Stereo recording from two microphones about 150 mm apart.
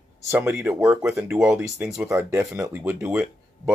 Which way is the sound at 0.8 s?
5° right (ahead or behind).